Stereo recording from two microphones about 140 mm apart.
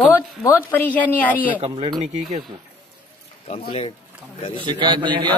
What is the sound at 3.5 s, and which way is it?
Speech, 45° left (ahead or behind).